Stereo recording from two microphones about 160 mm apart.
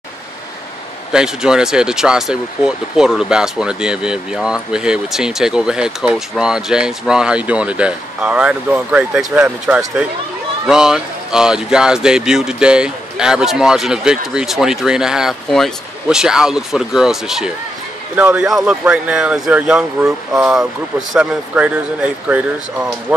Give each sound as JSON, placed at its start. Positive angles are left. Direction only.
{"t": 1.1, "sound": "speech", "side_deg": -5}